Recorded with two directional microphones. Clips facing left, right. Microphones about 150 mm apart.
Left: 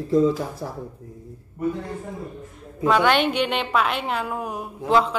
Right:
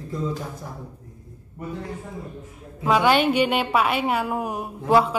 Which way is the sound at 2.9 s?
5° right (ahead or behind).